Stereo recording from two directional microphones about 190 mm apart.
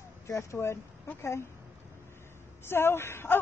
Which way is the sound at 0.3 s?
15° left (ahead or behind).